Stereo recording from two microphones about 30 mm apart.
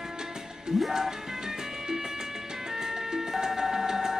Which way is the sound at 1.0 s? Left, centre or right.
Centre.